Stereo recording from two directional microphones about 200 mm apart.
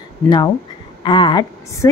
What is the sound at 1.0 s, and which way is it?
Speech, 25° left (ahead or behind).